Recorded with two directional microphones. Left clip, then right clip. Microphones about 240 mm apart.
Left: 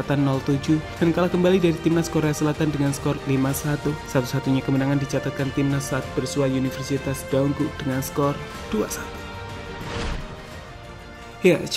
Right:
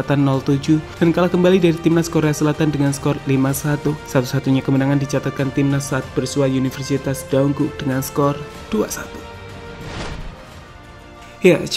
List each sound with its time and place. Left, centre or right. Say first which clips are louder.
0.0 s speech: right 5 dB; right
11.4 s speech: right 5 dB; right